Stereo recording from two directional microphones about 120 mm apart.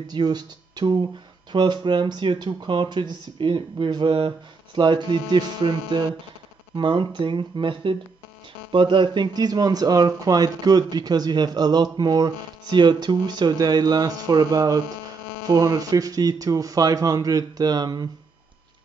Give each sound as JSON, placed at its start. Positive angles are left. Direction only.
{"t": 0.0, "sound": "speech", "side_deg": -35}